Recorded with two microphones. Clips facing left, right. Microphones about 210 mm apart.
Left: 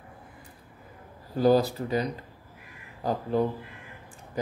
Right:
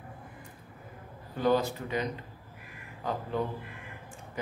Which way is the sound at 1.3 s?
35° left (ahead or behind).